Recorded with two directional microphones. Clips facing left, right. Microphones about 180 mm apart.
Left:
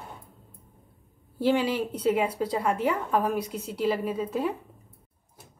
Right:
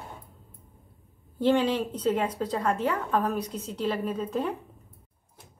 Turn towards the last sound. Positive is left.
turn(degrees=10)  # may be behind; listen again after turning